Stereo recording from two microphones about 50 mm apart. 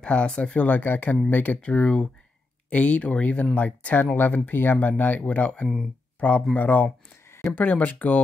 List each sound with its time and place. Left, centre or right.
0.0 s speech: centre; by 8.2 s left